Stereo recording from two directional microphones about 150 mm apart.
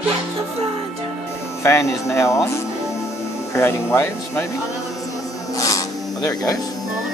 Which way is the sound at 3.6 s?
15° left (ahead or behind).